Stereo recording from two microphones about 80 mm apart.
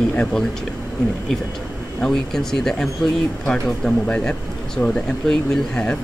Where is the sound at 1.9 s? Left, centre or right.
Centre.